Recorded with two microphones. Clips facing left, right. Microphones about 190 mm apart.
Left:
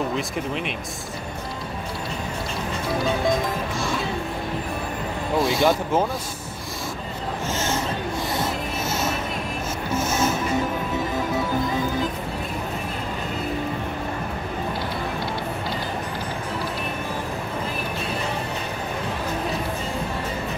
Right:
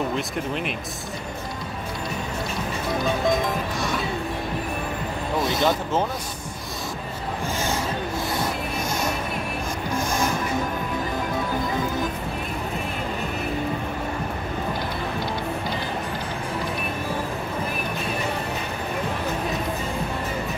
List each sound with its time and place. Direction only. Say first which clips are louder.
5.4 s speech: left 3 dB; 20° right (ahead or behind)
7.5 s a sound: left 1 dB; 15° right (ahead or behind)
9.9 s music: left 2 dB; 5° left (ahead or behind)